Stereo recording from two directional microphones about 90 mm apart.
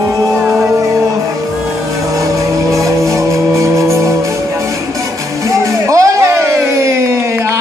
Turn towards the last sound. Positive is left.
turn(degrees=-30)  # may be behind; listen again after turning